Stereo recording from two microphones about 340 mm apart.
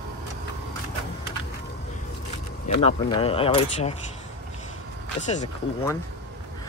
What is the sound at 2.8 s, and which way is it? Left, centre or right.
Speech, centre.